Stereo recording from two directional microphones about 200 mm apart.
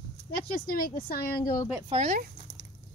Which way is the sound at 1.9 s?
40° right (ahead or behind).